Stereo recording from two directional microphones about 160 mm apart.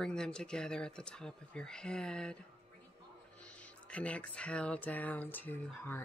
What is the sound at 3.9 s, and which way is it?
Speech, 10° left (ahead or behind).